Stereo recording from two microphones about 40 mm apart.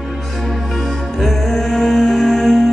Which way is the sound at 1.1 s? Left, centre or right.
Centre.